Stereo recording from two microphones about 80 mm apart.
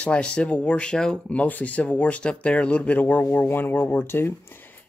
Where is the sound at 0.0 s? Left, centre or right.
Centre.